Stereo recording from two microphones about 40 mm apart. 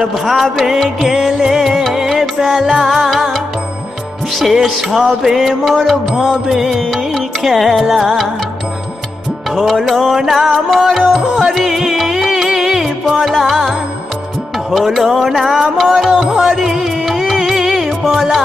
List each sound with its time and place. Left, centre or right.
0.1 s music: centre
6.1 s music: centre
9.7 s music: centre